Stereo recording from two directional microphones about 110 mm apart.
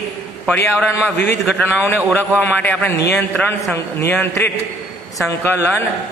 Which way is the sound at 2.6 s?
15° left (ahead or behind).